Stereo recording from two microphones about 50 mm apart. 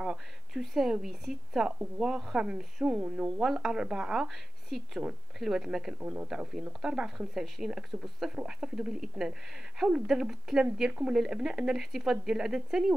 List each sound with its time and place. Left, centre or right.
0.0 s a sound: centre
1.0 s speech: centre
3.4 s speech: centre
5.9 s speech: right
6.8 s speech: centre
8.5 s speech: centre
10.9 s speech: right
11.1 s speech: centre